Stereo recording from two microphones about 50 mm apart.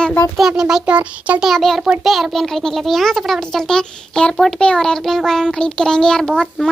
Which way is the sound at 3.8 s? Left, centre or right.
Centre.